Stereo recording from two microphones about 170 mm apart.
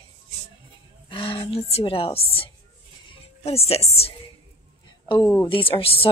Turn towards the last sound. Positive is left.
turn(degrees=35)  # may be behind; listen again after turning